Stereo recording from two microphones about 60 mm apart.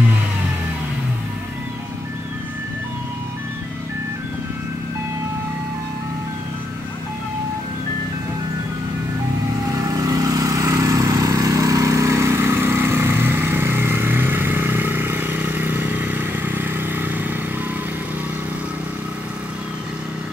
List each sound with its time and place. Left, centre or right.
9.7 s vehicle: right